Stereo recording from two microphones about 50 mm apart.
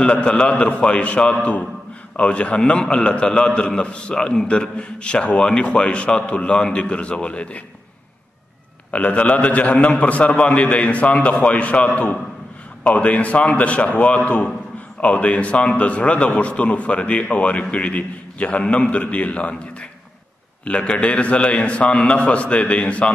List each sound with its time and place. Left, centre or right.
0.0 s a man's voice: left
8.9 s a man's voice: left